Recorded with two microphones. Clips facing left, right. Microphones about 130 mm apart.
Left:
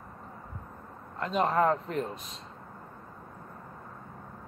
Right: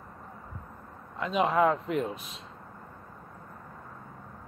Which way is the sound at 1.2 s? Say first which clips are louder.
Right 1 dB; centre (ahead or behind).